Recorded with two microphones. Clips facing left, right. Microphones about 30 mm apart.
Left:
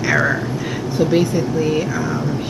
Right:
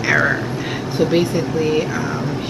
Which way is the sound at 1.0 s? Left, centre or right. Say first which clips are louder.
Even; centre.